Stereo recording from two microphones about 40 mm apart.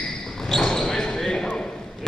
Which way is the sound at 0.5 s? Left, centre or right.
Centre.